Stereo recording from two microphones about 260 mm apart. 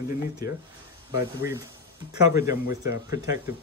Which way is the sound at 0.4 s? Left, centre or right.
Centre.